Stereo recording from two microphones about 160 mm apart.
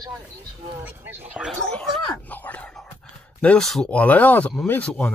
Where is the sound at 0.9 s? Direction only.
10° right (ahead or behind).